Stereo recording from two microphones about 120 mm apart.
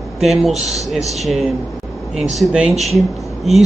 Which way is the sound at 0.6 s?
65° right (ahead or behind).